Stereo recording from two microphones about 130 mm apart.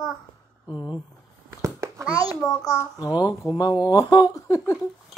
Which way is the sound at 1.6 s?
20° right (ahead or behind).